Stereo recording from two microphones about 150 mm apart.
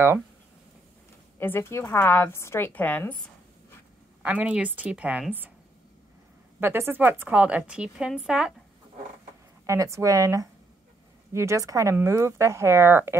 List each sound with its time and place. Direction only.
1.4 s a woman's voice: 15° left (ahead or behind)
4.2 s a woman's voice: 10° right (ahead or behind)
6.6 s a woman's voice: 15° right (ahead or behind)
9.7 s speech: 20° right (ahead or behind)